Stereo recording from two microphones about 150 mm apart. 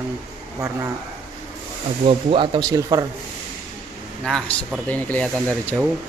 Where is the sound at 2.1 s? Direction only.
35° right (ahead or behind).